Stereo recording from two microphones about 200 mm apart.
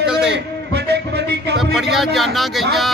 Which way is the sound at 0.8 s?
55° right (ahead or behind).